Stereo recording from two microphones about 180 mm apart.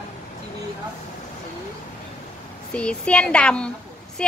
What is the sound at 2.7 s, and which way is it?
Speech, 5° left (ahead or behind).